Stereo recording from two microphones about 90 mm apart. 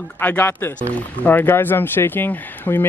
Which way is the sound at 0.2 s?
20° left (ahead or behind).